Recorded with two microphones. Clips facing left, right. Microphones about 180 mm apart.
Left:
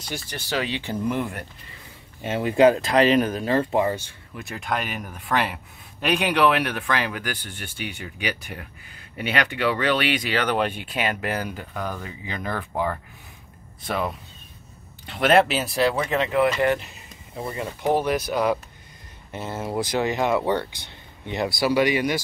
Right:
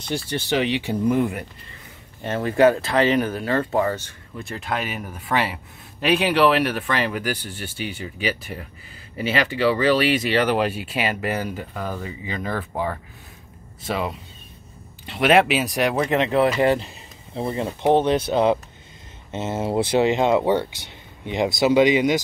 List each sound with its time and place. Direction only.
0.1 s speech: 25° right (ahead or behind); by 1.4 s 10° right (ahead or behind)
2.2 s speech: 15° left (ahead or behind); by 7.5 s 5° right (ahead or behind)
7.5 s speech: 55° left (ahead or behind)
7.9 s speech: 5° right (ahead or behind); by 22.2 s 20° right (ahead or behind)